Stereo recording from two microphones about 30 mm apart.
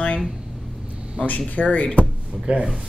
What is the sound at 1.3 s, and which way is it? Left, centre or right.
Speech, left.